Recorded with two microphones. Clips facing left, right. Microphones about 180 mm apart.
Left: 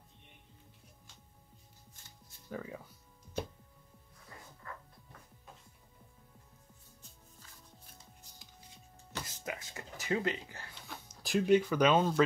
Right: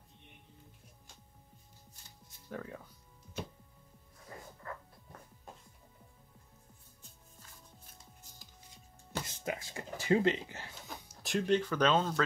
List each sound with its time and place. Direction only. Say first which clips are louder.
2.5 s speech: left 1 dB; centre (ahead or behind)
9.2 s a sound: right 2 dB; 25° right (ahead or behind)
11.2 s speech: left 3 dB; 5° left (ahead or behind)